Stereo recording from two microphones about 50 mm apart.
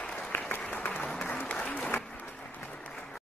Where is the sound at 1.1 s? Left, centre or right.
Left.